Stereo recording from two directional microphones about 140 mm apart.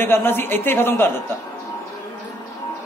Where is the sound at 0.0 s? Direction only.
15° left (ahead or behind).